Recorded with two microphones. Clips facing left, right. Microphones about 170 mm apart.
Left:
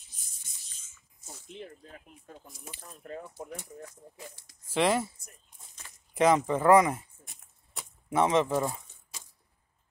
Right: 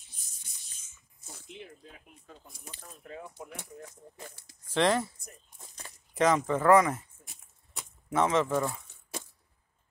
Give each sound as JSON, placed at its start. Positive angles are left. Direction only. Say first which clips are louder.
{"t": 4.6, "sound": "speech", "louder": "even", "side_deg": 10}
{"t": 6.1, "sound": "speech", "louder": "left 2 dB", "side_deg": 15}
{"t": 8.1, "sound": "speech", "louder": "left 1 dB", "side_deg": 15}
{"t": 9.1, "sound": "a sound", "louder": "right 12 dB", "side_deg": -55}